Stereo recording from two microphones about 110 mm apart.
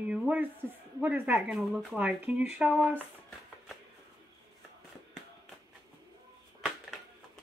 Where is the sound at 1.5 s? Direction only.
Centre (ahead or behind).